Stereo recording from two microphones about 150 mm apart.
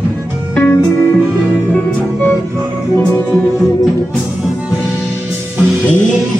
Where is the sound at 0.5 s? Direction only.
15° left (ahead or behind).